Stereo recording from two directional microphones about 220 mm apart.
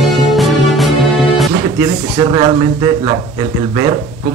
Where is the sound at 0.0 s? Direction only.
Centre (ahead or behind).